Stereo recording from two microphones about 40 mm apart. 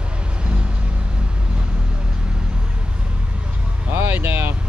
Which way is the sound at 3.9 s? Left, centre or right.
Right.